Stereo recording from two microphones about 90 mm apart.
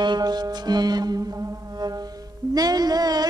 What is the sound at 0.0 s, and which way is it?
Music, 55° right (ahead or behind).